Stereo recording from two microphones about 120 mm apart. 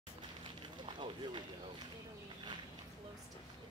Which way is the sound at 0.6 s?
40° right (ahead or behind).